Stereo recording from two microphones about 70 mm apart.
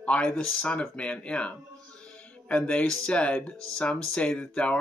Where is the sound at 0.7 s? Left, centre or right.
Centre.